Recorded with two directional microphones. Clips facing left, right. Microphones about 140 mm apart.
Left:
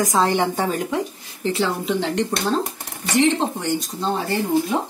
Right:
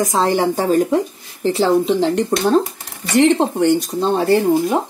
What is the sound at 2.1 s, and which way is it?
Speech, 45° right (ahead or behind).